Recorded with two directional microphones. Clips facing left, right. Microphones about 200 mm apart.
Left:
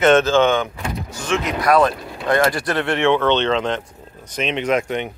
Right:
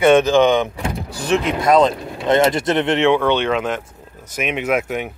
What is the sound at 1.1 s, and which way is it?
Speech, 35° right (ahead or behind).